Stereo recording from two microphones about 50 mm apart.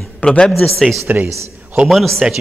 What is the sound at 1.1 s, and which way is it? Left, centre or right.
Speech, right.